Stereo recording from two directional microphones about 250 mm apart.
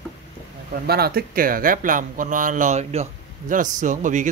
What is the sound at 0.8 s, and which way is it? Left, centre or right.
Speech, right.